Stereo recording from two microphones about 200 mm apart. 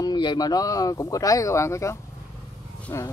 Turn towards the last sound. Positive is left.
turn(degrees=15)  # may be behind; listen again after turning